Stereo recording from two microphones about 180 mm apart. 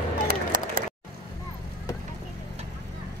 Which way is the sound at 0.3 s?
50° right (ahead or behind).